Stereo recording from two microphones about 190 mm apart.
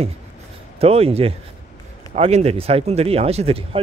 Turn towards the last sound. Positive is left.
turn(degrees=-30)  # may be behind; listen again after turning